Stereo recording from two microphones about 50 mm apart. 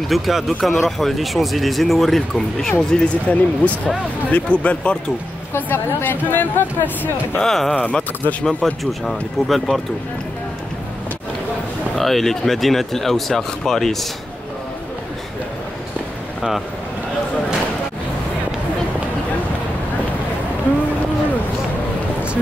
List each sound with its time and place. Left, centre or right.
0.1 s speech: centre
2.9 s speech: left
5.7 s speech: left
7.3 s speech: centre
7.8 s speech: left
9.0 s speech: centre
11.9 s speech: centre